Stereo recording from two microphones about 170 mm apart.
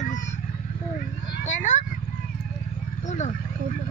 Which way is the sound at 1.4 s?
45° left (ahead or behind).